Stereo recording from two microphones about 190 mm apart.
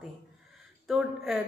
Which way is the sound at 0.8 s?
Centre (ahead or behind).